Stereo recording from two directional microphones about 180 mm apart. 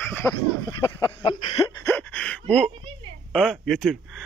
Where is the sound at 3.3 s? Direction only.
Centre (ahead or behind).